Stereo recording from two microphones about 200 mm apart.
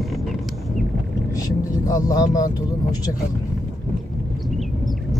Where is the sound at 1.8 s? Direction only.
15° left (ahead or behind).